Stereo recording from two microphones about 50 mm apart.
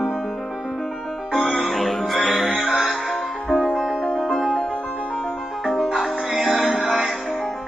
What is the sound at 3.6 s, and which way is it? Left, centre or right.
Music, centre.